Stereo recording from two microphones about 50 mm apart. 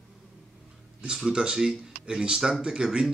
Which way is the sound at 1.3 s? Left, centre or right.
Centre.